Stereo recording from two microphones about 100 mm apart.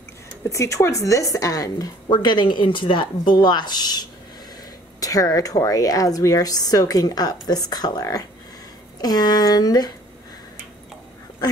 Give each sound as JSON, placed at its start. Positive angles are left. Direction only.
{"t": 0.5, "sound": "a woman's voice", "side_deg": 30}